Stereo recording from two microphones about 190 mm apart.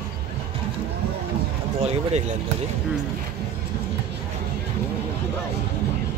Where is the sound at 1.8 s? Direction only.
35° right (ahead or behind).